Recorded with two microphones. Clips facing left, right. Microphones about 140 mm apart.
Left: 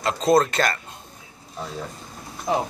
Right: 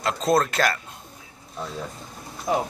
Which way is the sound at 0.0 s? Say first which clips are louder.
Left 3 dB; centre (ahead or behind).